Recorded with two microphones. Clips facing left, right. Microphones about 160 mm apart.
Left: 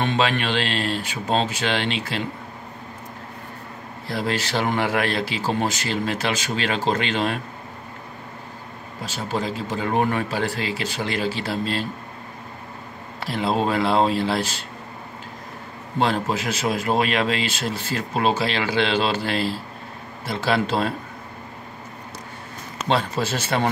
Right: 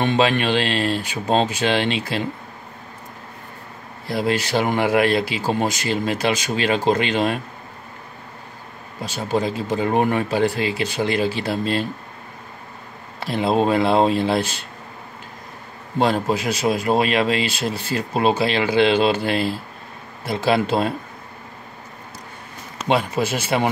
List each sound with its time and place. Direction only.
0.0 s speech: 15° right (ahead or behind)
4.1 s speech: 15° right (ahead or behind)
9.0 s speech: 15° right (ahead or behind)
13.2 s speech: 20° right (ahead or behind)
16.3 s speech: 15° right (ahead or behind)
22.8 s speech: 10° right (ahead or behind)